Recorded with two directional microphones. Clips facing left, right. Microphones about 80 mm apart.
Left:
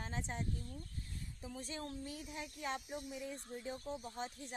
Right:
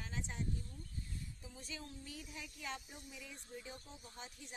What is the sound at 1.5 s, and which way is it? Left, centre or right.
Speech, left.